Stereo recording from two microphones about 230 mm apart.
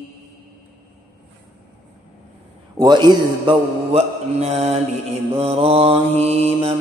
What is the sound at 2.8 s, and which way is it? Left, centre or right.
Mantra, centre.